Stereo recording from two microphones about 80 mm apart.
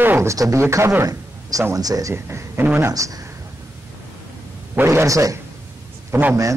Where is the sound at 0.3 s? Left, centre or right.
Right.